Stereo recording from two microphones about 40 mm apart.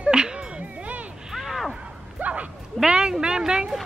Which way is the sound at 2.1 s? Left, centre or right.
Right.